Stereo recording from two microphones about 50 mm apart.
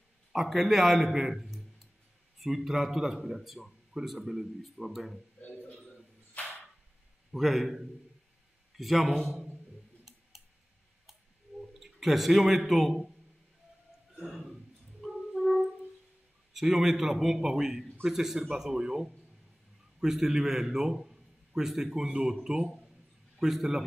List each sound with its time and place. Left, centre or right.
0.3 s speech: centre
5.5 s a sound: left
7.3 s speech: centre
11.8 s a man's voice: centre
14.1 s a sound: centre
16.5 s a man's voice: centre